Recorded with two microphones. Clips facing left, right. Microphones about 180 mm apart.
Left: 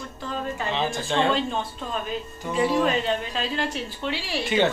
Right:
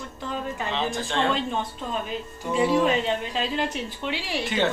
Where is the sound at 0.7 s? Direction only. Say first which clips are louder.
Left 2 dB; 5° left (ahead or behind).